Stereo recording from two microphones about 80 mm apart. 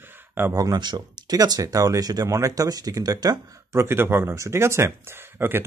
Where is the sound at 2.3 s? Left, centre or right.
Right.